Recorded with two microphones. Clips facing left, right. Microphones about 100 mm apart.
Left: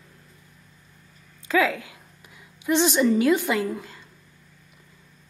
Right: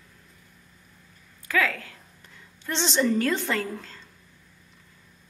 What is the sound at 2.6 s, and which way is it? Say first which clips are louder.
A woman's voice: left 5 dB; 10° left (ahead or behind).